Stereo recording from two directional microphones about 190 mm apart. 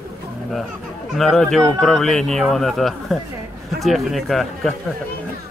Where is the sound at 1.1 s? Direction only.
Centre (ahead or behind).